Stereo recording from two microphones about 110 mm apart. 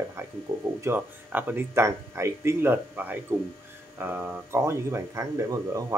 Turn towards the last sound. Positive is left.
turn(degrees=-30)  # may be behind; listen again after turning